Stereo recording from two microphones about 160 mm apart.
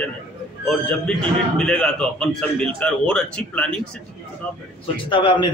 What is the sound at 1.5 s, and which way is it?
Speech, 5° left (ahead or behind).